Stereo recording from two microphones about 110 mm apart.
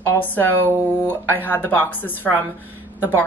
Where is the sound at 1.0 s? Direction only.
20° left (ahead or behind).